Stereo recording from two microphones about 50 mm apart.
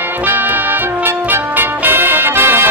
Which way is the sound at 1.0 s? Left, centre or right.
Right.